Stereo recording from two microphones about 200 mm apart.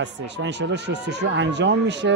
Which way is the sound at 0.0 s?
60° right (ahead or behind).